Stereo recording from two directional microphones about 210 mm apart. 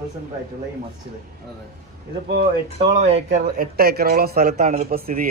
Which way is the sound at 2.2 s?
55° right (ahead or behind).